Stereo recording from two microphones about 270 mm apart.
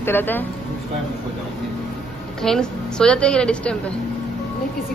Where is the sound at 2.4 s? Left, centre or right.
Centre.